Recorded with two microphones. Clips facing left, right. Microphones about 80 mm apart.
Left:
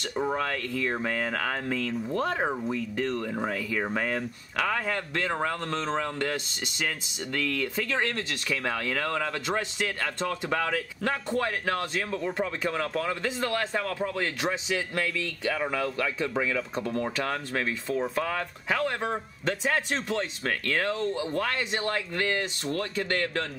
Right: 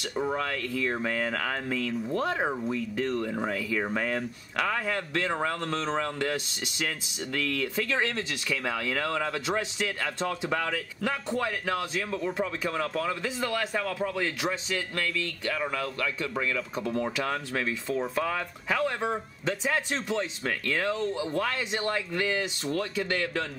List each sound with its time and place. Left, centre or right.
0.1 s speech: centre
7.3 s speech: centre